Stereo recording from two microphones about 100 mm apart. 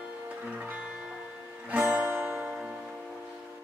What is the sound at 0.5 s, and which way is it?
Music, 15° right (ahead or behind).